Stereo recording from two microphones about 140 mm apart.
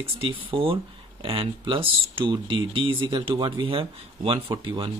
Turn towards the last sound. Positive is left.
turn(degrees=-35)  # may be behind; listen again after turning